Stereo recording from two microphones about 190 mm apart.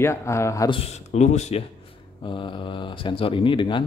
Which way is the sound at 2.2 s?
25° left (ahead or behind).